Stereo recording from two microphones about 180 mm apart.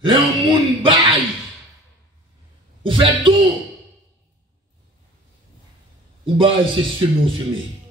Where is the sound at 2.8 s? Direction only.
30° right (ahead or behind).